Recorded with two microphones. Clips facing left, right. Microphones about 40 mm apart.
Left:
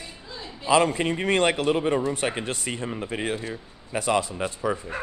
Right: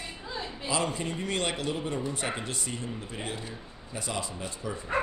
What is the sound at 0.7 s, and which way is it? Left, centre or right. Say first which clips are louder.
A man's voice: left 10 dB; left.